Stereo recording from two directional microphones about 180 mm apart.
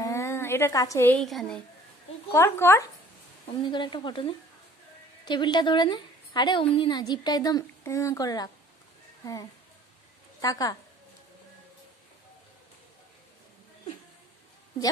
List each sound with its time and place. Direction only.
0.0 s a woman's voice: 15° left (ahead or behind)
2.3 s speech: 15° left (ahead or behind)
3.7 s a woman's voice: 25° left (ahead or behind)